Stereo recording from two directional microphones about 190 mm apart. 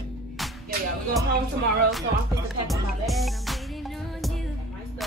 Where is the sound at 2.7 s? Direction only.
Centre (ahead or behind).